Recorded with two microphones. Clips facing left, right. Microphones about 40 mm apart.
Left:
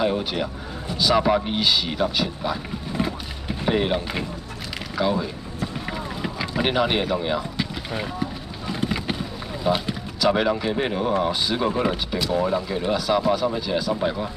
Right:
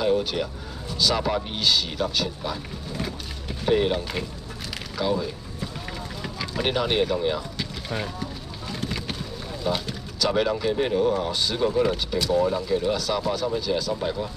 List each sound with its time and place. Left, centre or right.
0.0 s speech: centre
2.9 s boat: centre
4.9 s a sound: centre
9.6 s speech: centre